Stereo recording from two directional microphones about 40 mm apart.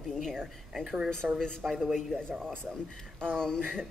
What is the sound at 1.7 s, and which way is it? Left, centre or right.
Speech, centre.